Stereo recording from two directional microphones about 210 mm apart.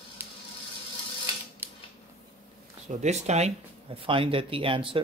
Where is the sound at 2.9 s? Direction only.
35° right (ahead or behind).